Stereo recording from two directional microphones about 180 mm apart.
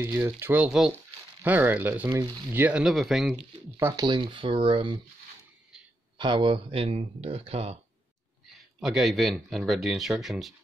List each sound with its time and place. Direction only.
0.1 s speech: 15° right (ahead or behind)
3.5 s speech: 15° right (ahead or behind)
6.1 s speech: 25° right (ahead or behind)
8.5 s speech: centre (ahead or behind)